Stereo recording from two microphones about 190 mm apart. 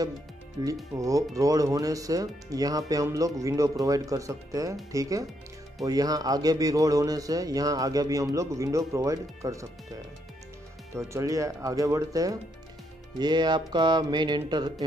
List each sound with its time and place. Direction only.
0.6 s speech: 20° right (ahead or behind)
5.9 s speech: 20° right (ahead or behind)
11.0 s speech: 15° right (ahead or behind)